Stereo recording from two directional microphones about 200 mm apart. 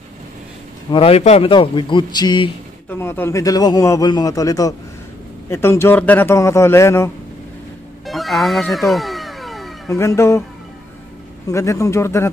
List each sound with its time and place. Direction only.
0.9 s a man's voice: 30° left (ahead or behind)
2.9 s a man's voice: 10° left (ahead or behind)
8.1 s cat: centre (ahead or behind)
9.8 s a man's voice: 15° left (ahead or behind)
11.4 s a man's voice: 15° left (ahead or behind)